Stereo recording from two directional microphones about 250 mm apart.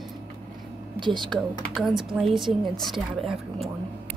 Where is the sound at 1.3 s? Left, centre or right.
Centre.